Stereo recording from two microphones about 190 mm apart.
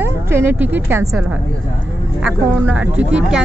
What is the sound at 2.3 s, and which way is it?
Speech, 5° right (ahead or behind).